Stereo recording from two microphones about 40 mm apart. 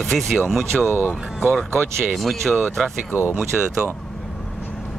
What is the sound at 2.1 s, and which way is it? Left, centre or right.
Speech, centre.